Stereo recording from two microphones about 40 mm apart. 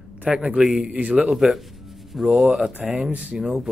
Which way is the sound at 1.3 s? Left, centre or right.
Centre.